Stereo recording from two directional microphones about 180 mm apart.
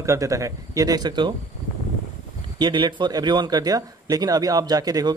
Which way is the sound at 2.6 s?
25° right (ahead or behind).